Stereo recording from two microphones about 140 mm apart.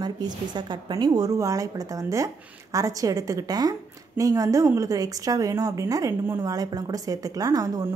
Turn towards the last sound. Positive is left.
turn(degrees=-25)  # may be behind; listen again after turning